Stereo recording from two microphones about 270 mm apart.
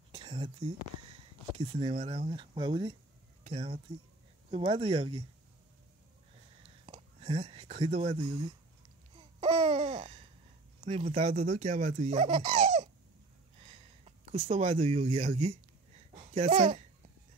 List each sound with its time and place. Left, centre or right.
0.1 s speech: centre
6.9 s speech: right
9.1 s babbling: centre
10.8 s speech: right
13.6 s a sound: right